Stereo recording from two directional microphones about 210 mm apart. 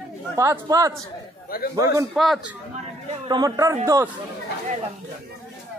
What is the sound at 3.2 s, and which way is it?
Speech, 20° right (ahead or behind).